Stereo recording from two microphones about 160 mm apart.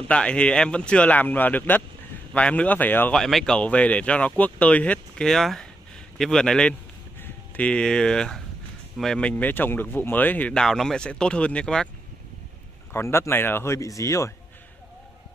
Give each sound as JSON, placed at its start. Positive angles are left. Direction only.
{"t": 0.1, "sound": "a man's voice", "side_deg": 5}
{"t": 12.9, "sound": "speech", "side_deg": 15}